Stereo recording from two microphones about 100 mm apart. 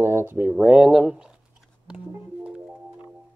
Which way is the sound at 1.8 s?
10° right (ahead or behind).